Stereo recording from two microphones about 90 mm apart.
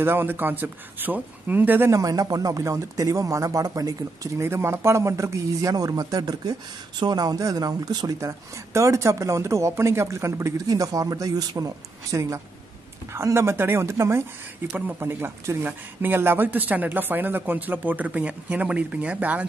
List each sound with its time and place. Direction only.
0.0 s speech: 25° right (ahead or behind)
1.9 s speech: 40° right (ahead or behind)
4.5 s speech: 30° right (ahead or behind)
14.7 s speech: 20° right (ahead or behind)